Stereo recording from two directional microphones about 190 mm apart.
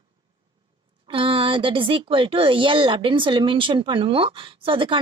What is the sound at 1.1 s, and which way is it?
Speech, 25° right (ahead or behind).